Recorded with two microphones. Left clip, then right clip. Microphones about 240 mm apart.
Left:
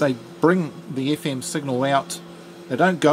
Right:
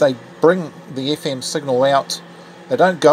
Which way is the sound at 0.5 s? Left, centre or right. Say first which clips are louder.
Right 5 dB; left.